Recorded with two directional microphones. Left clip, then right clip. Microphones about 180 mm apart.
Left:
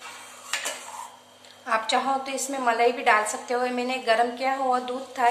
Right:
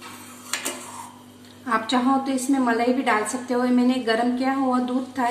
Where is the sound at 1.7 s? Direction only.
30° left (ahead or behind).